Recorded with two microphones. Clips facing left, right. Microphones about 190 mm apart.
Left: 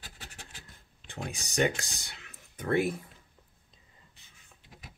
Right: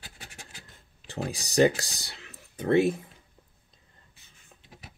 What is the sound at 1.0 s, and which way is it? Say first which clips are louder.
Speech: right 6 dB; 35° right (ahead or behind).